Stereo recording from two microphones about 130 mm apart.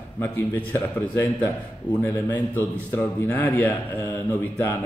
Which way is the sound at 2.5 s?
15° left (ahead or behind).